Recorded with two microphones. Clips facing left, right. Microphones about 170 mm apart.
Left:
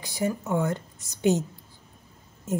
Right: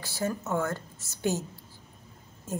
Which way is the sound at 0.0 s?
15° left (ahead or behind).